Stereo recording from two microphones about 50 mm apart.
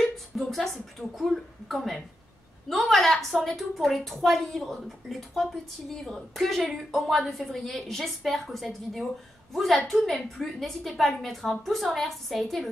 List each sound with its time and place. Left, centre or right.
0.4 s a woman's voice: centre